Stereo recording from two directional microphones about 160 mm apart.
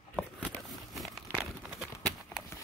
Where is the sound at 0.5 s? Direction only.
Centre (ahead or behind).